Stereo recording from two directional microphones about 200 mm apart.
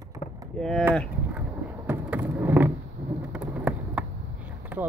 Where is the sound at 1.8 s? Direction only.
10° right (ahead or behind).